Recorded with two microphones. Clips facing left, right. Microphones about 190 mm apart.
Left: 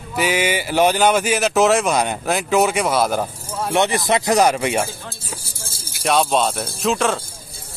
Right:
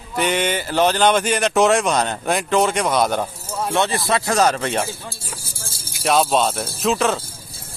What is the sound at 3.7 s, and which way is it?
Speech, 15° left (ahead or behind).